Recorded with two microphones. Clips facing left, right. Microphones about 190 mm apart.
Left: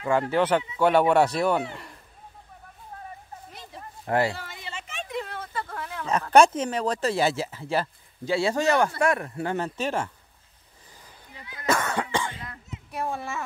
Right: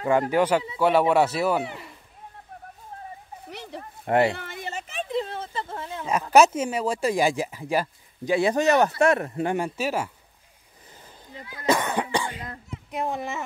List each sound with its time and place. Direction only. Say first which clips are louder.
0.3 s speech: right 1 dB; 10° right (ahead or behind)
3.4 s a sound: right 9 dB; 75° right (ahead or behind)
4.0 s speech: right 3 dB; 20° right (ahead or behind)
4.4 s a sound: right 5 dB; 50° right (ahead or behind); by 6.0 s 25° right (ahead or behind)
6.0 s speech: even; 10° right (ahead or behind)
11.6 s cough: right 2 dB; 15° right (ahead or behind)
12.9 s a child's voice: right 2 dB; 20° right (ahead or behind)